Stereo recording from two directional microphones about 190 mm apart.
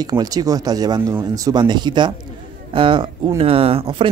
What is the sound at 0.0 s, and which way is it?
Speech, 20° right (ahead or behind).